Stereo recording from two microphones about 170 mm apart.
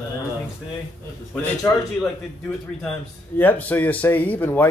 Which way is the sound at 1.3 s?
15° left (ahead or behind).